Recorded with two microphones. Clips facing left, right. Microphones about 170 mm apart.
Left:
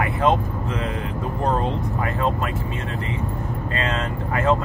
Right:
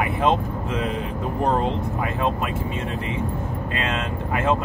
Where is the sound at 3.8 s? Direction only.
15° right (ahead or behind).